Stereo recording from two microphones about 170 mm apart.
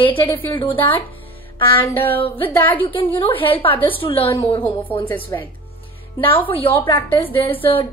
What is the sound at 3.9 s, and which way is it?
Speech, 35° left (ahead or behind).